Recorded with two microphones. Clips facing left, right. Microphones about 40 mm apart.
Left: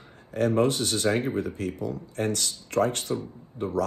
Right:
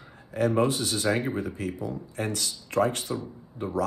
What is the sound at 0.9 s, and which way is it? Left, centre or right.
Speech, right.